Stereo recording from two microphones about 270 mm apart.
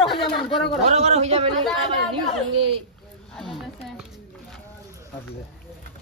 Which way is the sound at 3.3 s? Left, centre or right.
Centre.